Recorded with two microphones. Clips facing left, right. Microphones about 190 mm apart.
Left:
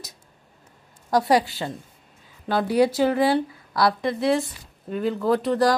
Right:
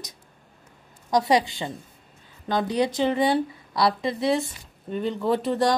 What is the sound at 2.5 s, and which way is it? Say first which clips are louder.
Speech: left 4 dB; 10° left (ahead or behind).